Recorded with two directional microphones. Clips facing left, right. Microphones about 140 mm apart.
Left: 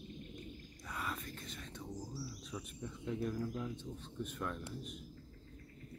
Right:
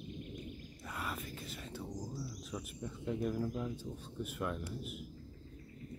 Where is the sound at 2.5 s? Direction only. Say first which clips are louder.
Right 3 dB; 5° right (ahead or behind).